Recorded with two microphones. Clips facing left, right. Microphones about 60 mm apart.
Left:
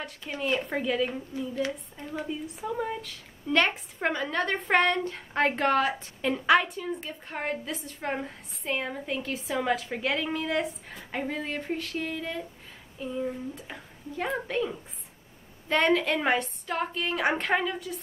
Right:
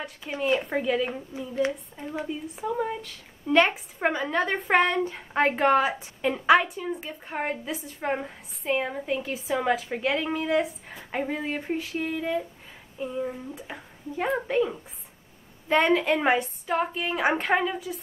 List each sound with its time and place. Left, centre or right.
0.0 s speech: centre